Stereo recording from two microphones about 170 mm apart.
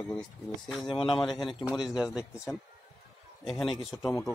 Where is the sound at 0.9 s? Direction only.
30° left (ahead or behind).